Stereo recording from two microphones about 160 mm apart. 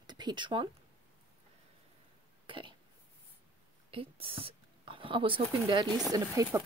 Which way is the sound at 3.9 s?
35° right (ahead or behind).